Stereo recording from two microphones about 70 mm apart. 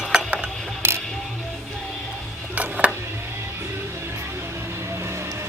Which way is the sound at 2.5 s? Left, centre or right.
Centre.